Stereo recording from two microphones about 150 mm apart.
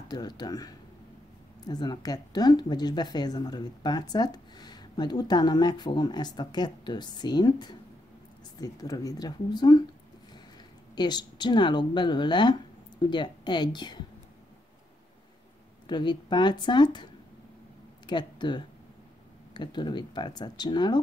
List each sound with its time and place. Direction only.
0.1 s speech: 25° left (ahead or behind)
11.0 s speech: 30° left (ahead or behind)
15.9 s speech: 30° left (ahead or behind)
18.0 s speech: 30° left (ahead or behind)